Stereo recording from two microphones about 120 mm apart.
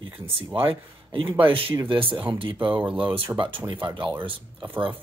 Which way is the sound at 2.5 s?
10° right (ahead or behind).